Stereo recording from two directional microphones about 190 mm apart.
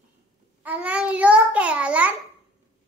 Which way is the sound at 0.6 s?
10° right (ahead or behind).